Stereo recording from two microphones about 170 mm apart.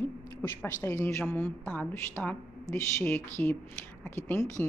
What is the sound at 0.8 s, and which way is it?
Speech, 15° left (ahead or behind).